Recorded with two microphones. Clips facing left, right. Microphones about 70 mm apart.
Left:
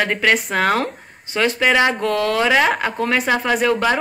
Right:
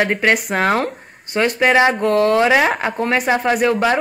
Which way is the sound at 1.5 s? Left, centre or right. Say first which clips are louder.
Right 4 dB; right.